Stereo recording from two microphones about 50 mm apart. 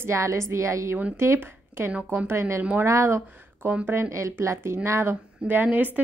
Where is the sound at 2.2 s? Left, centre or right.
Right.